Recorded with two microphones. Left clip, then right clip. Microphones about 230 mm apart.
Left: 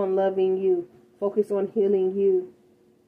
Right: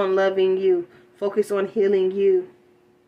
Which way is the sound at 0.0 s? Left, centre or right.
Centre.